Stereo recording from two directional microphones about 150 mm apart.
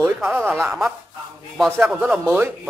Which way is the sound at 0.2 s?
10° right (ahead or behind).